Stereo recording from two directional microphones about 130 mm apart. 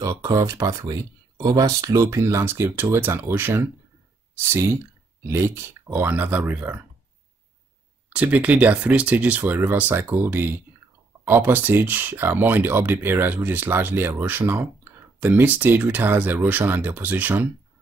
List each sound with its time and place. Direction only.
0.0 s speech: 25° right (ahead or behind)
8.1 s speech: 10° right (ahead or behind)